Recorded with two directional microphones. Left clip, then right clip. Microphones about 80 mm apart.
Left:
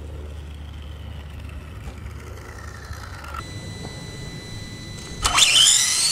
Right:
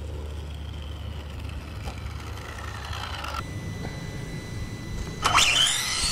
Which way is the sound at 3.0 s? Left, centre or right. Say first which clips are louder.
Right 5 dB; right.